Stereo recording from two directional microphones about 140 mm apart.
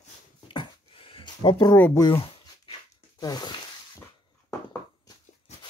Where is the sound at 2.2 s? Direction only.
40° left (ahead or behind).